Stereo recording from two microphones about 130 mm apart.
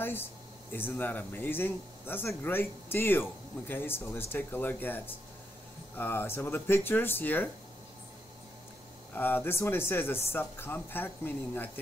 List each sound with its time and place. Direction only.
0.0 s speech: 15° left (ahead or behind)
9.1 s speech: 15° left (ahead or behind)